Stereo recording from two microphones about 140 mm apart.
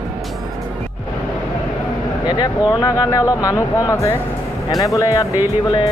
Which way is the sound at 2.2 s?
30° left (ahead or behind).